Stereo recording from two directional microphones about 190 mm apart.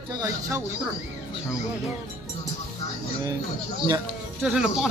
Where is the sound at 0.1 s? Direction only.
20° right (ahead or behind).